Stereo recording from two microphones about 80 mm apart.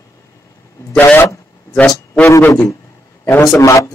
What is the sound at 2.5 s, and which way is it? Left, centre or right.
A man's voice, left.